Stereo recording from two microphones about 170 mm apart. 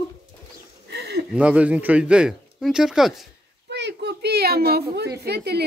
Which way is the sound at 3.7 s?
90° right.